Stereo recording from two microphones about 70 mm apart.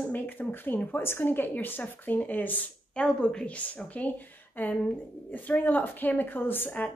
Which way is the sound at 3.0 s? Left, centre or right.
Centre.